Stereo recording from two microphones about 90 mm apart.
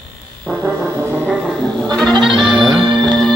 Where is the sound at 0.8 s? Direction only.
30° right (ahead or behind).